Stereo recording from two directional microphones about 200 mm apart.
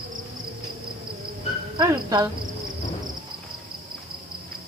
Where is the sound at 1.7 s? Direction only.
20° right (ahead or behind).